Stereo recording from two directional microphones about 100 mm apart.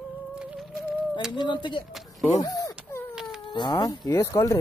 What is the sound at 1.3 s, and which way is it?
Speech, 50° left (ahead or behind).